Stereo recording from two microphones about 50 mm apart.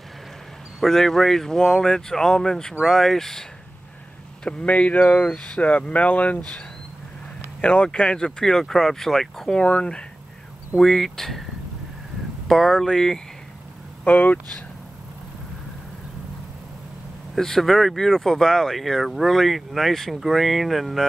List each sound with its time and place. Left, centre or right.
0.7 s speech: centre
4.5 s speech: left
4.9 s speech: left
7.6 s speech: left
9.6 s speech: left
10.8 s speech: centre
12.4 s speech: centre
14.0 s speech: left
17.4 s speech: centre